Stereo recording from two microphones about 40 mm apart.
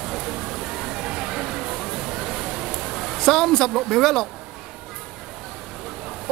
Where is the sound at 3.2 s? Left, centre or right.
Centre.